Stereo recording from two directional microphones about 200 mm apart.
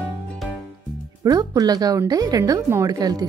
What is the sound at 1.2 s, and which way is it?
A woman's voice, 20° right (ahead or behind).